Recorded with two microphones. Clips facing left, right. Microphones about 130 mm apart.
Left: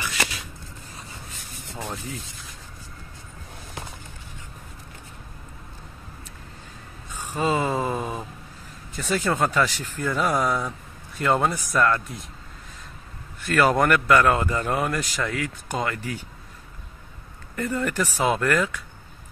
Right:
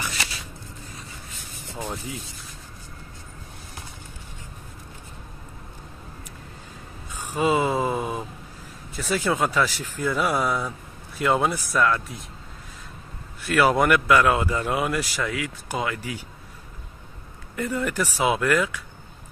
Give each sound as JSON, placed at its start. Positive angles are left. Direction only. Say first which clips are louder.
{"t": 1.8, "sound": "a man's voice", "louder": "right 1 dB", "side_deg": -15}
{"t": 7.3, "sound": "a sound", "louder": "right 2 dB", "side_deg": -10}
{"t": 8.9, "sound": "a man's voice", "louder": "even", "side_deg": -5}
{"t": 13.5, "sound": "speech", "louder": "even", "side_deg": -10}
{"t": 17.6, "sound": "a man's voice", "louder": "even", "side_deg": -10}